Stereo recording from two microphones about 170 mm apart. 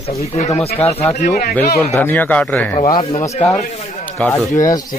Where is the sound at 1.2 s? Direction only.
60° left (ahead or behind).